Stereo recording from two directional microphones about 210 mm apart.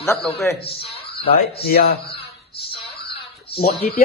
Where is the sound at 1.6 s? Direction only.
50° left (ahead or behind).